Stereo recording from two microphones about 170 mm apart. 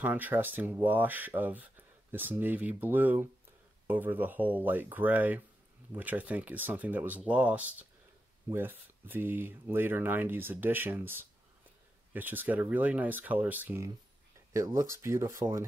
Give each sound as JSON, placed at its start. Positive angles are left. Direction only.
{"t": 0.0, "sound": "speech", "side_deg": -10}